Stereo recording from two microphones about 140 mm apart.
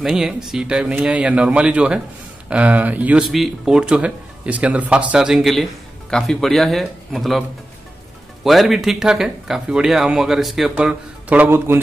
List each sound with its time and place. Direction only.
0.0 s speech: 5° right (ahead or behind)
8.5 s speech: centre (ahead or behind)